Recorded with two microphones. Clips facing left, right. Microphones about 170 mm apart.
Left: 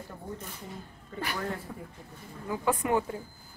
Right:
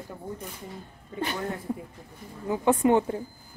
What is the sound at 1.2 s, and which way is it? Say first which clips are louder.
A woman's voice: right 3 dB; 20° right (ahead or behind).